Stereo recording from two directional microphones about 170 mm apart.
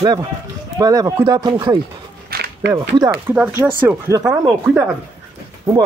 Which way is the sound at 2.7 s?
25° right (ahead or behind).